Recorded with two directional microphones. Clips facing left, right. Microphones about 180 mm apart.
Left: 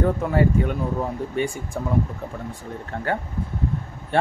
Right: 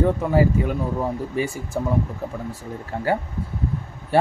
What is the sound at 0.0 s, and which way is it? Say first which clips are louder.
Speech: right 2 dB; centre (ahead or behind).